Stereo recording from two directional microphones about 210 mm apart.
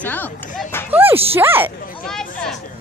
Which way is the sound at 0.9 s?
10° right (ahead or behind).